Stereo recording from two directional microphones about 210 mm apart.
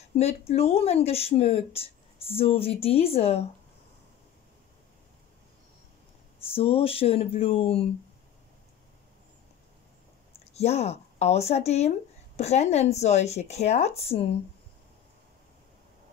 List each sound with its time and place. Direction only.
0.2 s speech: 30° left (ahead or behind)
6.5 s speech: 25° left (ahead or behind)
10.3 s speech: 30° left (ahead or behind)